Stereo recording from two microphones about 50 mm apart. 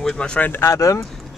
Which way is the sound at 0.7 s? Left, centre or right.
Left.